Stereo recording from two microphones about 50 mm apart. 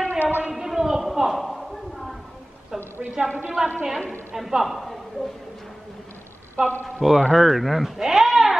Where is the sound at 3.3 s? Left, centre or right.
Right.